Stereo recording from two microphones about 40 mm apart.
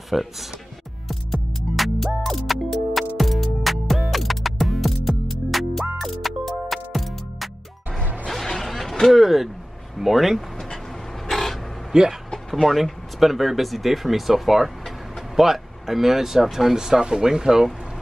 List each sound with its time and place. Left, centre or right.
0.1 s speech: centre
1.0 s music: centre
8.3 s a sound: centre
9.0 s speech: centre
11.2 s a sound: centre
11.9 s speech: centre
12.6 s speech: centre